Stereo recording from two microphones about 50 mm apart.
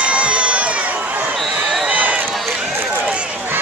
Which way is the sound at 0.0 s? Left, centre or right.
Right.